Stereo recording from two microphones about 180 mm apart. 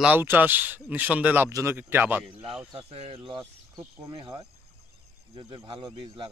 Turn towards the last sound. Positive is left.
turn(degrees=-25)  # may be behind; listen again after turning